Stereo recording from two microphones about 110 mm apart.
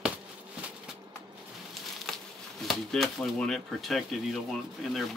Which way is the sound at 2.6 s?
Centre (ahead or behind).